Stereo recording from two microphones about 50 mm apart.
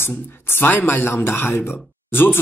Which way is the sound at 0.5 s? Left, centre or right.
Left.